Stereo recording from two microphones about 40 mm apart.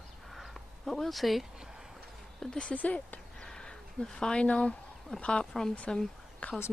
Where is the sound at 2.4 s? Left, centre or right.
Centre.